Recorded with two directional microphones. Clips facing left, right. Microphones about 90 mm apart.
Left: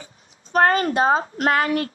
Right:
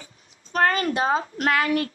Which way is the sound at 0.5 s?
35° left (ahead or behind).